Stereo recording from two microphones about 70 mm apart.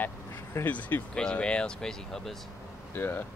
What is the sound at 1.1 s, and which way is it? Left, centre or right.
Speech, centre.